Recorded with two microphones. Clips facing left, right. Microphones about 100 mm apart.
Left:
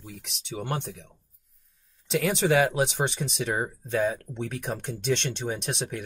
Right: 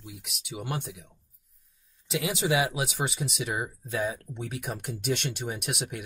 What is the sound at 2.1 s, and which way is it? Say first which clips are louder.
Speech: left 4 dB; 45° left (ahead or behind).